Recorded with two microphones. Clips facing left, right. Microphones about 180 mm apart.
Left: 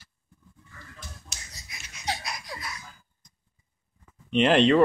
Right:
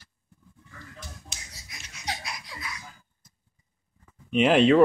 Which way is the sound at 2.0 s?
40° left (ahead or behind).